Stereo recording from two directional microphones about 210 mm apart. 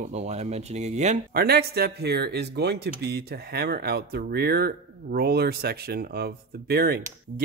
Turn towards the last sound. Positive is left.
turn(degrees=-50)  # may be behind; listen again after turning